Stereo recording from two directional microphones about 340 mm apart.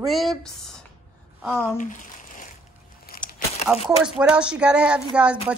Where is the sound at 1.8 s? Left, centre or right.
Left.